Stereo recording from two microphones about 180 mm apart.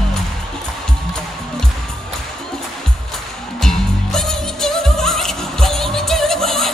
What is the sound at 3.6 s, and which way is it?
Music, centre (ahead or behind).